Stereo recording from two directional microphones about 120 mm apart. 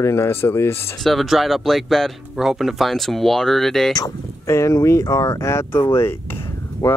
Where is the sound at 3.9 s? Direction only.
25° left (ahead or behind).